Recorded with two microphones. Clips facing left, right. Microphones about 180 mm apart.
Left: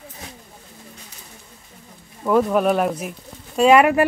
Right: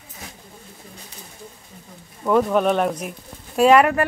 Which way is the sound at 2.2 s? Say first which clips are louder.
Left 1 dB; 5° left (ahead or behind).